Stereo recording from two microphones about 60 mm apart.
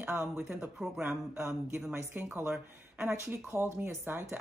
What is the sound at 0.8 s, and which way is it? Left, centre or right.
Speech, centre.